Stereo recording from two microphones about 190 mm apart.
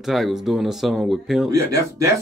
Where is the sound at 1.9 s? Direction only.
15° right (ahead or behind).